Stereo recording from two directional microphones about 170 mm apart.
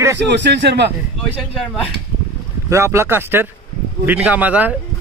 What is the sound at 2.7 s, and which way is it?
Speech, 15° right (ahead or behind).